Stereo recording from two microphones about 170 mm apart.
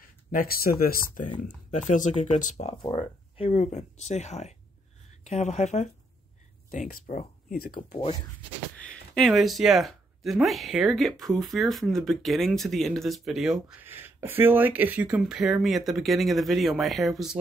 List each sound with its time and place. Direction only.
0.3 s speech: 60° left (ahead or behind)
1.7 s speech: 45° left (ahead or behind)
8.7 s speech: 5° left (ahead or behind)